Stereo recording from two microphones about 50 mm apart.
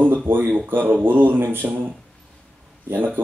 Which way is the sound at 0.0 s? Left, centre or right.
Right.